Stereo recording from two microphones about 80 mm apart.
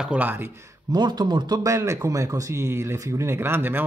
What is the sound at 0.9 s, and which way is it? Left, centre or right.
Speech, right.